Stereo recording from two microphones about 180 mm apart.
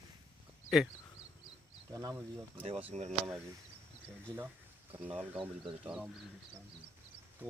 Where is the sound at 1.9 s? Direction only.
20° right (ahead or behind).